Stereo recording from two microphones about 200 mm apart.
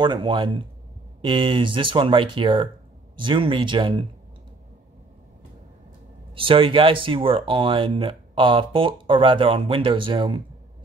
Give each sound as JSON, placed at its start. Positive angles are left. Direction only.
{"t": 0.0, "sound": "speech", "side_deg": -25}
{"t": 6.3, "sound": "speech", "side_deg": -25}